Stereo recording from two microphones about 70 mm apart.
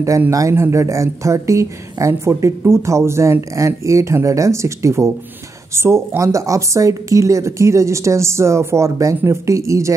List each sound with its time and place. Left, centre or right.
0.3 s a woman's voice: right